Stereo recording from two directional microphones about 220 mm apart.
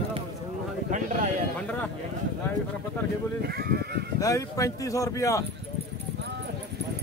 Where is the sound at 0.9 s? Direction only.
35° right (ahead or behind).